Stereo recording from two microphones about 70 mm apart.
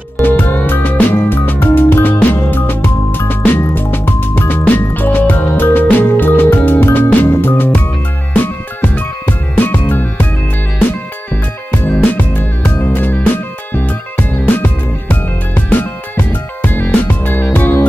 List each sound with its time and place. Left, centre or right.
0.2 s music: left
8.8 s music: left
11.9 s music: left